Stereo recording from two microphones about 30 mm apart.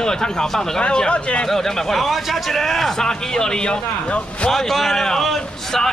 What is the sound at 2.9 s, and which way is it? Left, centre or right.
Speech, centre.